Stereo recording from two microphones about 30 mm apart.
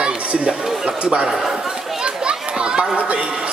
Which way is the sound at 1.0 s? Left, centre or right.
Right.